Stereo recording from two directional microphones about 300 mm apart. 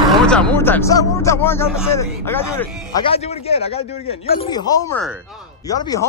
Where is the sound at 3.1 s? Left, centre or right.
Centre.